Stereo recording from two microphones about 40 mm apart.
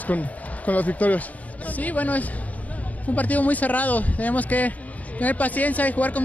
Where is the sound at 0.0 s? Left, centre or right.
Left.